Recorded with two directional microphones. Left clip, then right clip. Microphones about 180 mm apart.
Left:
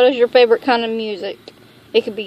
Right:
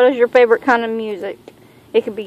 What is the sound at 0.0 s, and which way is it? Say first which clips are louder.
Speech: even; 20° left (ahead or behind).